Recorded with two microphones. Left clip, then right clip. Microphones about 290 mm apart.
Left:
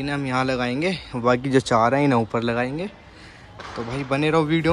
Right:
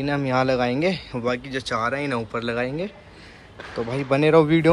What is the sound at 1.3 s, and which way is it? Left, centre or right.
Speech, left.